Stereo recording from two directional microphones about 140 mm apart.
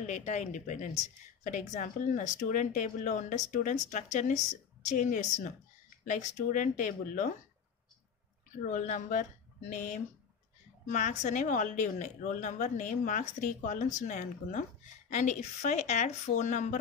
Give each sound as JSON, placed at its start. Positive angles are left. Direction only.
{"t": 0.0, "sound": "a woman's voice", "side_deg": 55}
{"t": 8.6, "sound": "a woman's voice", "side_deg": 65}